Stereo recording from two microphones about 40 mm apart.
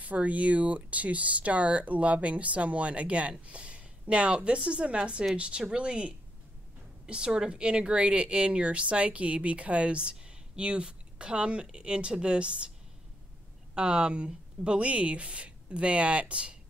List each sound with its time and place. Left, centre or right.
0.0 s a woman's voice: right
13.7 s speech: right